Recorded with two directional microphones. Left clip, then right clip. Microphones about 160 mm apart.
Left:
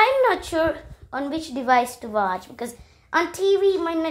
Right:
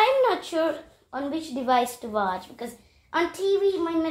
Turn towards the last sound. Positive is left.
turn(degrees=35)  # may be behind; listen again after turning